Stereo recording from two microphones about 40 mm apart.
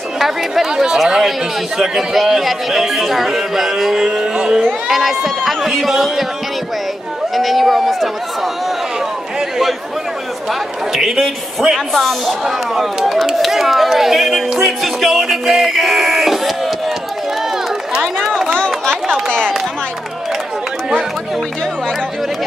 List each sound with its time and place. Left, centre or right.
0.2 s speech: centre
4.8 s speech: centre
7.3 s speech: centre
10.9 s speech: centre
11.9 s speech: centre
14.6 s music: centre
19.2 s a sound: left